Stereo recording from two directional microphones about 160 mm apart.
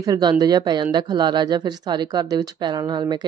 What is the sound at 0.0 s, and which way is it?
Speech, 25° right (ahead or behind).